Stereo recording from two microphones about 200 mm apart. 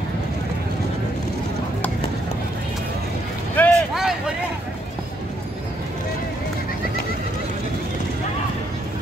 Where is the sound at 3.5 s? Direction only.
Centre (ahead or behind).